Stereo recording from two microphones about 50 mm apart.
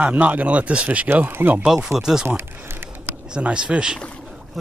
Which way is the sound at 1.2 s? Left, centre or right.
Right.